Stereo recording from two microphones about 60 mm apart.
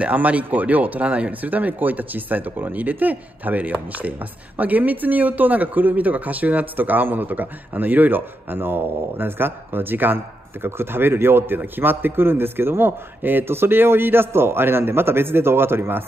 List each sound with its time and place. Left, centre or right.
0.0 s speech: right